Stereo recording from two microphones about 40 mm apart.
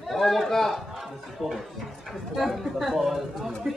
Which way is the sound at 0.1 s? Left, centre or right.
Centre.